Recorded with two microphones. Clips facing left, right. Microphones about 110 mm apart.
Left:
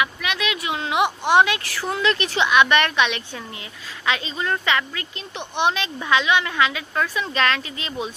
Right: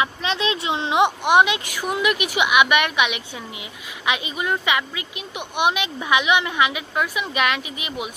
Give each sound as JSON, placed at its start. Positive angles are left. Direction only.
{"t": 0.0, "sound": "speech", "side_deg": -30}